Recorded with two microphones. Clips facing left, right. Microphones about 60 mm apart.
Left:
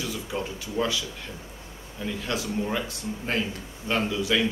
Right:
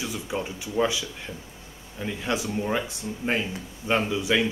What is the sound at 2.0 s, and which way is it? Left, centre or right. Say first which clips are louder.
Speech: right 2 dB; centre.